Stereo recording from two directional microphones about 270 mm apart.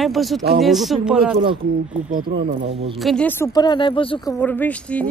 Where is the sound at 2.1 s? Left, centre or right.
Right.